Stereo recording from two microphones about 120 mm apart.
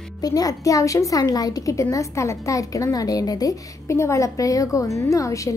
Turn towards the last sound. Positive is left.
turn(degrees=25)  # may be behind; listen again after turning